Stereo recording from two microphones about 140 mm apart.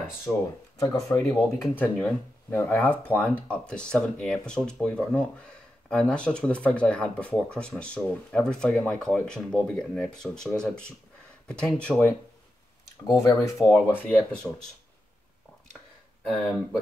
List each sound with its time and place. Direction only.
0.3 s speech: 5° right (ahead or behind)
0.9 s speech: 5° left (ahead or behind)
13.2 s speech: 20° left (ahead or behind); by 14.7 s 5° left (ahead or behind)